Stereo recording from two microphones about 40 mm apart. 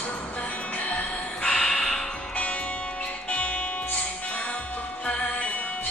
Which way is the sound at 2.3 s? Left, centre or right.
Left.